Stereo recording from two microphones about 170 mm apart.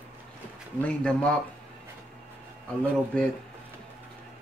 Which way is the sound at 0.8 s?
5° left (ahead or behind).